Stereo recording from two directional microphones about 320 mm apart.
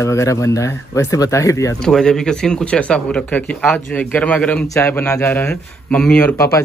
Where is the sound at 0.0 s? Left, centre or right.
Centre.